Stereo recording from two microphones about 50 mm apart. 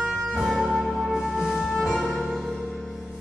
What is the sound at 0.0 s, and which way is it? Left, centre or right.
Music, centre.